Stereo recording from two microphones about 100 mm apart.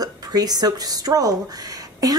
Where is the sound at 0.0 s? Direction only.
40° right (ahead or behind).